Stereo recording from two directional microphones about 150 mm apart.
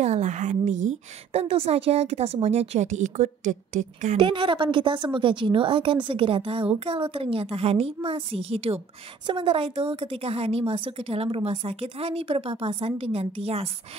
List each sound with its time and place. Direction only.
0.0 s a woman's voice: 50° right (ahead or behind)
4.2 s a woman's voice: 35° right (ahead or behind)